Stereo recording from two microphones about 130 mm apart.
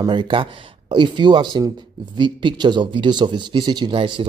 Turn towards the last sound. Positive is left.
turn(degrees=-45)  # may be behind; listen again after turning